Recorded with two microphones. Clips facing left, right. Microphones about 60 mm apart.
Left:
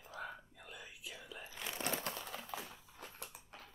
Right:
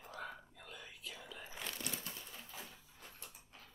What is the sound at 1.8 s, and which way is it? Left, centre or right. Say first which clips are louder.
Crushing: left 6 dB; left.